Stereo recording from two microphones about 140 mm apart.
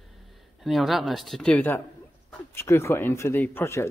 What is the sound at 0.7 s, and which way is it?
Speech, centre (ahead or behind).